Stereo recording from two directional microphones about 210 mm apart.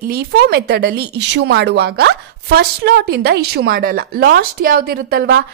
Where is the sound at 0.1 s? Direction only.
50° right (ahead or behind).